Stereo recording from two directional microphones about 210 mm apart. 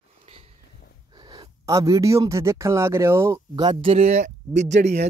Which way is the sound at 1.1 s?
20° right (ahead or behind).